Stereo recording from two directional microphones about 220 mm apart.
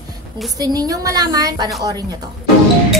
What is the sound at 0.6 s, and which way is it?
A woman's voice, 15° right (ahead or behind).